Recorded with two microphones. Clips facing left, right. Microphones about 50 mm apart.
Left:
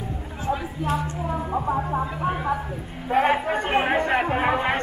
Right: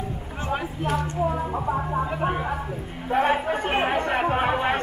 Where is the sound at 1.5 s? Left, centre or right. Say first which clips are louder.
Left 1 dB; centre.